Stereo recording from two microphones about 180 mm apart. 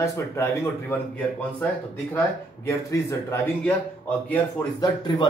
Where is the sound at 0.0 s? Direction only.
15° left (ahead or behind).